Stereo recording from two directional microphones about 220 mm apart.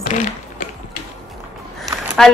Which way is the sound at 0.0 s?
40° left (ahead or behind).